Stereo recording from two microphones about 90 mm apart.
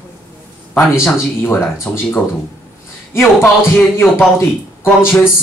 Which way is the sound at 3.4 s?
Centre (ahead or behind).